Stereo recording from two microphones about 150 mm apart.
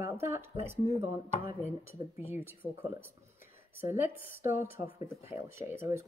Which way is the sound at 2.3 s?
15° right (ahead or behind).